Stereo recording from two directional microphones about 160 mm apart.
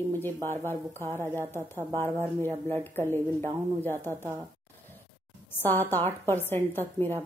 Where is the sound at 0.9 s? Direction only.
15° right (ahead or behind).